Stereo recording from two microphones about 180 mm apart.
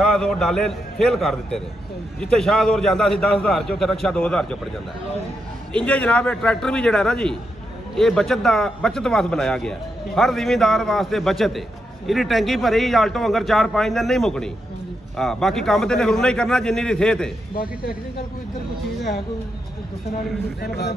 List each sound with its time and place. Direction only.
0.0 s a man's voice: 5° left (ahead or behind)
5.7 s a man's voice: 10° left (ahead or behind)
20.6 s a man's voice: 65° left (ahead or behind)